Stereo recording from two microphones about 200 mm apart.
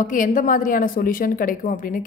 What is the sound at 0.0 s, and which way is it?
A woman's voice, 40° left (ahead or behind).